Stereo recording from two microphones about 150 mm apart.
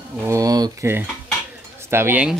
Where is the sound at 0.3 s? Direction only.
25° right (ahead or behind).